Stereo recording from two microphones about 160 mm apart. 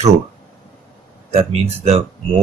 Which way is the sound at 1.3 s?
40° right (ahead or behind).